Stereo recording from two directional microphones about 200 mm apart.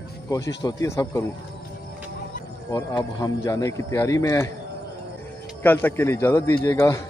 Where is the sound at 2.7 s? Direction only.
20° left (ahead or behind).